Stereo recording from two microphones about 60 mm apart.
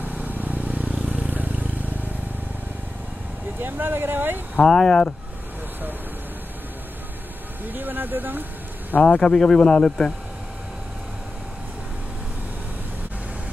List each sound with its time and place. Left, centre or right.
0.0 s vehicle: right
3.6 s speech: right
4.6 s speech: centre
7.6 s speech: right
9.0 s speech: centre